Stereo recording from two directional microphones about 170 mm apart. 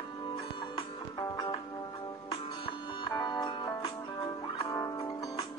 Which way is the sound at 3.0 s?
25° left (ahead or behind).